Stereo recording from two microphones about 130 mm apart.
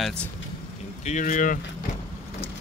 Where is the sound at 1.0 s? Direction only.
75° left (ahead or behind).